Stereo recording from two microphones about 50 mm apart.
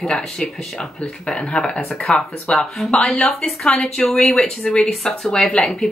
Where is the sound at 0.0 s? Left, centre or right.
Centre.